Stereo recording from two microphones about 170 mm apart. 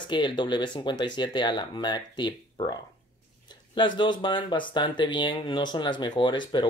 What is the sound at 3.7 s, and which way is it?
Speech, 25° left (ahead or behind).